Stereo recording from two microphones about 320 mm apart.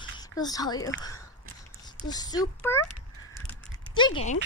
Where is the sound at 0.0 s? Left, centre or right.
Centre.